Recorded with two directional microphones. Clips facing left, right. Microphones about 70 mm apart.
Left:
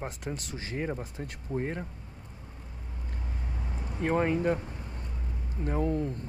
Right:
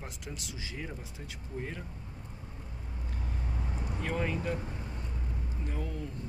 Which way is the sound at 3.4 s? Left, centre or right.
Centre.